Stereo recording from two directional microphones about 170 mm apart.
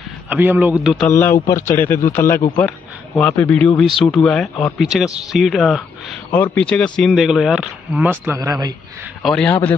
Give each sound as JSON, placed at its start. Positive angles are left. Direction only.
{"t": 0.3, "sound": "a man's voice", "side_deg": -10}
{"t": 1.0, "sound": "speech", "side_deg": 15}
{"t": 9.2, "sound": "speech", "side_deg": 5}